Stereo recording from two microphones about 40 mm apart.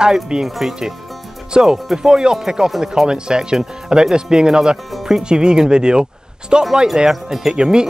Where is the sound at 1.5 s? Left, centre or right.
Right.